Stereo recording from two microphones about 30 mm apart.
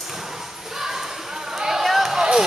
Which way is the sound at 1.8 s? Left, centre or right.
Centre.